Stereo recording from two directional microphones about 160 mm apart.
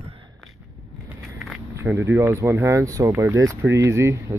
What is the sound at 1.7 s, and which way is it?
Speech, 15° right (ahead or behind).